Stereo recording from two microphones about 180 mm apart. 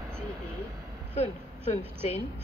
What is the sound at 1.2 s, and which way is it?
Speech, 35° left (ahead or behind).